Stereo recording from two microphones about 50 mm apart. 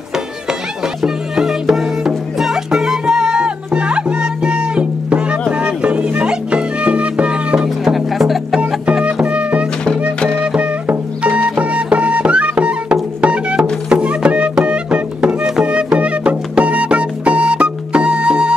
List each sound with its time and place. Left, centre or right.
1.0 s music: centre
7.8 s music: centre
9.0 s music: right